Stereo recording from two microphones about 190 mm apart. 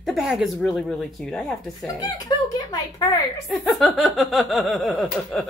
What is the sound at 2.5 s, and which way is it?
Speech, 20° left (ahead or behind).